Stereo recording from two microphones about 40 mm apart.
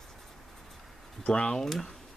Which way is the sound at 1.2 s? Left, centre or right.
Left.